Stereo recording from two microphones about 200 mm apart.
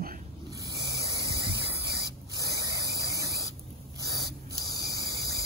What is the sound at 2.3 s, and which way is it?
Spray, 15° right (ahead or behind).